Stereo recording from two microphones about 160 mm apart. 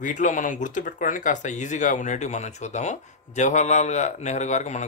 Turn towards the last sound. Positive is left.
turn(degrees=45)  # may be behind; listen again after turning